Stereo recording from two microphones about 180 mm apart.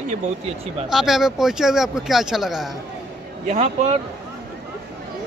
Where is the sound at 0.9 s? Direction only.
Centre (ahead or behind).